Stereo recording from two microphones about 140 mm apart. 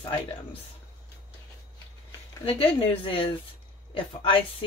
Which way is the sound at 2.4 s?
40° left (ahead or behind).